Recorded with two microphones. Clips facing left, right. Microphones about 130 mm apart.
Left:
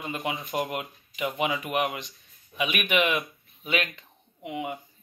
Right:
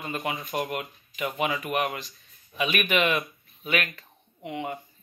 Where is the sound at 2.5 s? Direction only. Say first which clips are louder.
Right 1 dB; 10° left (ahead or behind).